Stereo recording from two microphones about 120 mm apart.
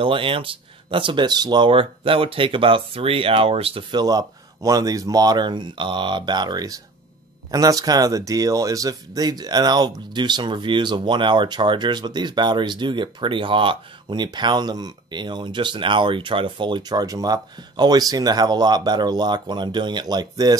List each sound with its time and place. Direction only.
0.0 s speech: 45° right (ahead or behind)
3.9 s speech: 35° right (ahead or behind)